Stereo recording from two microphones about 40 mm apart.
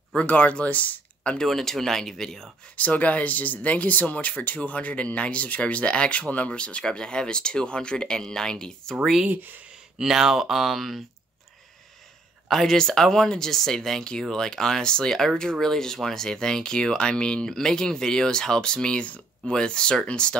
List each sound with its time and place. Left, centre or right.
0.3 s speech: left
1.4 s speech: centre
2.7 s speech: left; by 8.9 s centre
9.3 s speech: right
9.9 s speech: centre
12.6 s speech: centre